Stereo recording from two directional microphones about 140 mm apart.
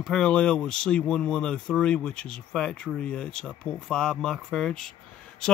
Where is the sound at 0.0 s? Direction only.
5° left (ahead or behind).